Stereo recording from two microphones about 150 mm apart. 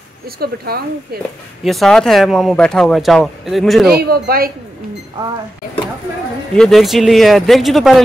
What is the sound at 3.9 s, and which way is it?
Speech, 90° right.